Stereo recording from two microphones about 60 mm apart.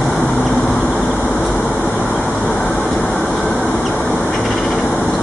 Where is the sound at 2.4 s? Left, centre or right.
Centre.